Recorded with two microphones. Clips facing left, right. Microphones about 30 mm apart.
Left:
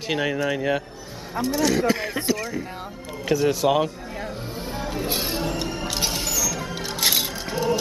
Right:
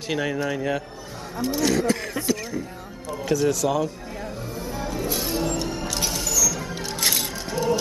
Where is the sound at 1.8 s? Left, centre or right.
Centre.